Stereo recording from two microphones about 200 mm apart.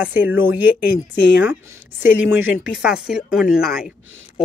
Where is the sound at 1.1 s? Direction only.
55° left (ahead or behind).